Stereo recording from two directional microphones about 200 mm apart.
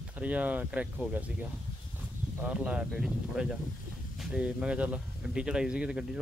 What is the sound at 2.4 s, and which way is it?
Speech, 5° right (ahead or behind).